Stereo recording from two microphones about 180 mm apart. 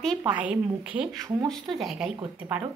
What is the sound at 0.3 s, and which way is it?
Speech, 10° right (ahead or behind).